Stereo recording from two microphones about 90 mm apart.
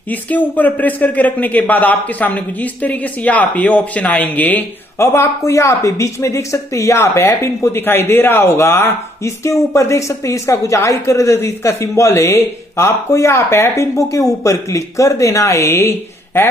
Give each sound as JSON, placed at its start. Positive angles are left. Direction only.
{"t": 0.1, "sound": "speech", "side_deg": 20}
{"t": 4.9, "sound": "speech", "side_deg": 30}